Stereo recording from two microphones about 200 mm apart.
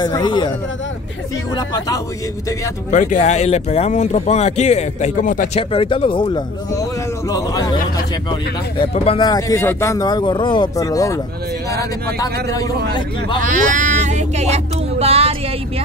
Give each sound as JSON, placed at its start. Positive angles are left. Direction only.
{"t": 0.0, "sound": "speech", "side_deg": 20}
{"t": 2.9, "sound": "speech", "side_deg": 40}
{"t": 5.6, "sound": "speech", "side_deg": 25}
{"t": 12.2, "sound": "speech", "side_deg": 15}
{"t": 13.5, "sound": "child singing", "side_deg": -40}